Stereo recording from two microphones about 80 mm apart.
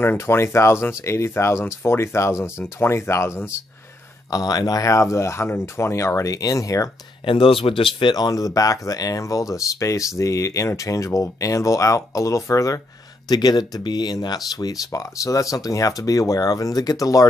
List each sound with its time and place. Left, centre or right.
0.0 s speech: left
4.3 s speech: left
7.2 s speech: left
13.3 s speech: left